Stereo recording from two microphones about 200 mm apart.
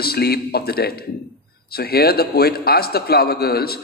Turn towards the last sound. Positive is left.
turn(degrees=50)  # may be behind; listen again after turning